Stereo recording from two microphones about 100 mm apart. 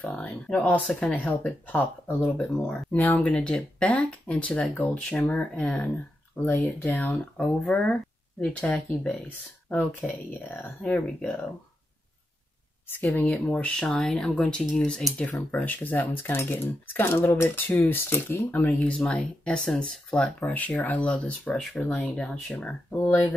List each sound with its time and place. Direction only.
0.1 s speech: 10° left (ahead or behind)
2.3 s speech: 10° left (ahead or behind)
12.8 s speech: 15° left (ahead or behind)
15.5 s speech: 15° left (ahead or behind)